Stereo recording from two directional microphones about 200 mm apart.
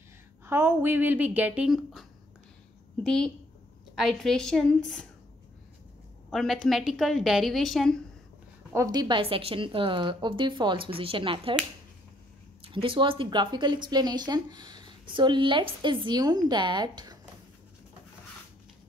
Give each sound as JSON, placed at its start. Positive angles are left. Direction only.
{"t": 0.5, "sound": "a woman's voice", "side_deg": -10}
{"t": 6.3, "sound": "a woman's voice", "side_deg": 0}
{"t": 8.7, "sound": "speech", "side_deg": -20}
{"t": 12.6, "sound": "speech", "side_deg": -25}